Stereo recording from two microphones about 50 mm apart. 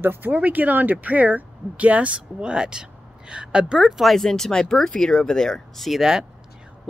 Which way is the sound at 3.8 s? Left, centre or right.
Centre.